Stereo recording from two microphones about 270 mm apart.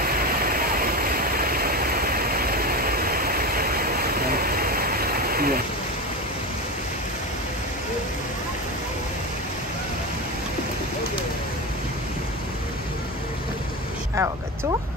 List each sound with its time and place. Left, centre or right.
0.0 s waterfall: right